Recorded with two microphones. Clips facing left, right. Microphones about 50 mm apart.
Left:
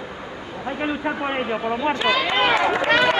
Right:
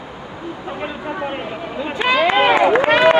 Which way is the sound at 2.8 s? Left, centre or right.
Centre.